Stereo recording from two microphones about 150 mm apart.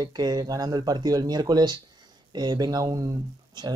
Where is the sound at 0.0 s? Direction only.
25° right (ahead or behind).